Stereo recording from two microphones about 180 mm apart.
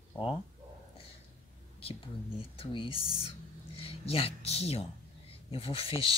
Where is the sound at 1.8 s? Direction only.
30° left (ahead or behind).